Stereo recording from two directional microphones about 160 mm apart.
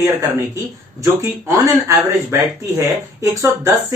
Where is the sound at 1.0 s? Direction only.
20° right (ahead or behind).